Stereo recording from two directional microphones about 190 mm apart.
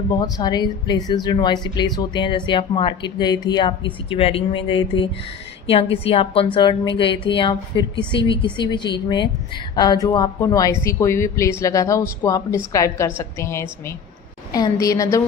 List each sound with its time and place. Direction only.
0.1 s speech: 20° left (ahead or behind)